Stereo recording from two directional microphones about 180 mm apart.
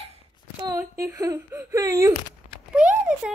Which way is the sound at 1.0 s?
15° right (ahead or behind).